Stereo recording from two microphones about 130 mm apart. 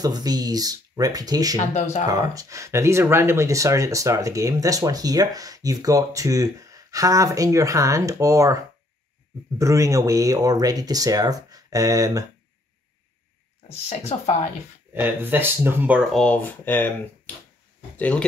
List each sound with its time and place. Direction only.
0.0 s speech: 30° right (ahead or behind)
1.6 s speech: 65° left (ahead or behind)
2.0 s speech: 30° right (ahead or behind)
13.8 s speech: 55° left (ahead or behind)
14.9 s speech: 15° right (ahead or behind)
16.1 s speech: 5° left (ahead or behind)
17.9 s speech: 10° left (ahead or behind)